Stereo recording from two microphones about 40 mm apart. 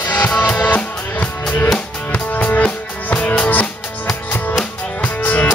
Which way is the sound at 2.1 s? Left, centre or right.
Left.